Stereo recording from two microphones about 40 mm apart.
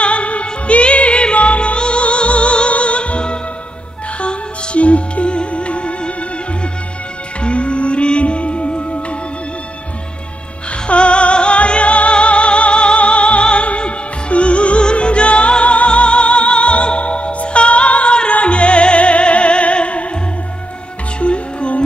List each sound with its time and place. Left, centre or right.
0.0 s music: left
7.4 s music: left
10.9 s music: left
21.2 s music: left